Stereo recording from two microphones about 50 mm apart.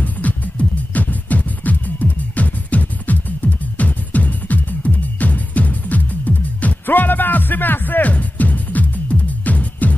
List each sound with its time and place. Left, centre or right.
0.0 s music: left